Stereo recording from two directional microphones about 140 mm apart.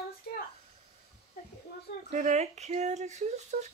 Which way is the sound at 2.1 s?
60° right (ahead or behind).